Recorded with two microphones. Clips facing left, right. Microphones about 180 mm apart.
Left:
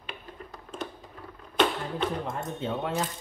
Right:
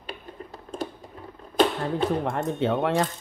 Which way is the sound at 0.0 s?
35° right (ahead or behind).